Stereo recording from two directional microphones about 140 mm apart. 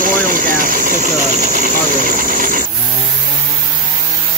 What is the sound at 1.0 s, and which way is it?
Cricket, 60° right (ahead or behind).